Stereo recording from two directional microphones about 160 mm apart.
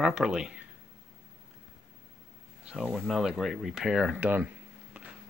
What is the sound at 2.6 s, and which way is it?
Speech, 5° right (ahead or behind).